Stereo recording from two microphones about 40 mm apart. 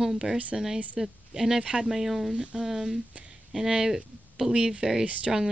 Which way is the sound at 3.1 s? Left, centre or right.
Right.